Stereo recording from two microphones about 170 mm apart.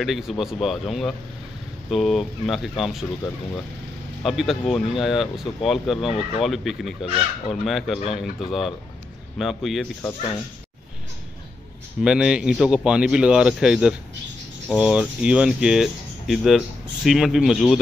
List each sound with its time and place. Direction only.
0.0 s speech: centre (ahead or behind)
4.2 s speech: centre (ahead or behind)
6.0 s speech: 35° left (ahead or behind)
6.4 s speech: centre (ahead or behind)
12.0 s speech: 5° right (ahead or behind)